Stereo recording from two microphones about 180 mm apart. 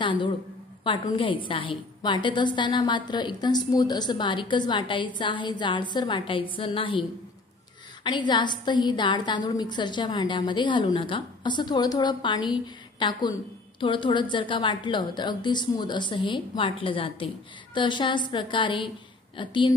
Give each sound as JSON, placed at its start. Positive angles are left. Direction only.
{"t": 0.0, "sound": "a woman's voice", "side_deg": 25}